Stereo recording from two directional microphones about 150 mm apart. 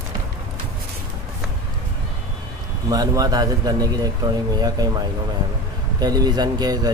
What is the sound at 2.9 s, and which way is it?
A man's voice, 25° right (ahead or behind).